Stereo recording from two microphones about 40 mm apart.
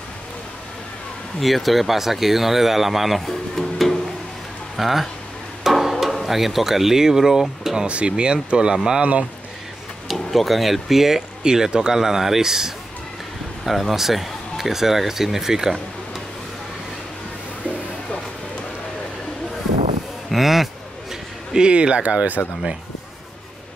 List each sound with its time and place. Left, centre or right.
1.4 s speech: centre
7.8 s speech: right
10.0 s speech: centre
20.2 s a sound: centre
21.5 s speech: right